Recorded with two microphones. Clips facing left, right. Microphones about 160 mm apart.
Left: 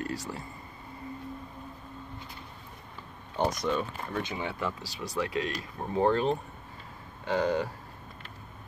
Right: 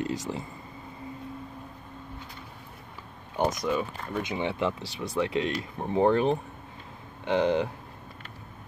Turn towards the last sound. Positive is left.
turn(degrees=-20)  # may be behind; listen again after turning